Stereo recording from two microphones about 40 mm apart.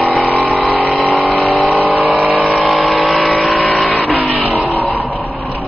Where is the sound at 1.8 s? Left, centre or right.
Right.